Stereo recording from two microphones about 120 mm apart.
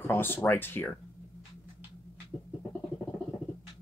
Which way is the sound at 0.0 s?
20° left (ahead or behind).